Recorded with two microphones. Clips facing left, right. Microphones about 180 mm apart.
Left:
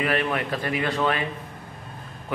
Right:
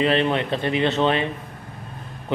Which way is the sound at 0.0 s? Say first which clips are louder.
Right 5 dB; 25° right (ahead or behind).